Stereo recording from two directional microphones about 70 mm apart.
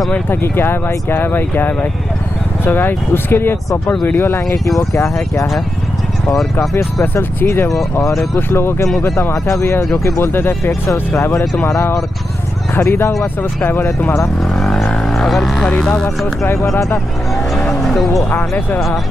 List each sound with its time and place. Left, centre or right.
0.1 s speech: left
4.9 s speech: left
7.2 s speech: left
14.5 s vehicle: centre
15.6 s speech: centre
16.4 s speech: left
17.6 s music: centre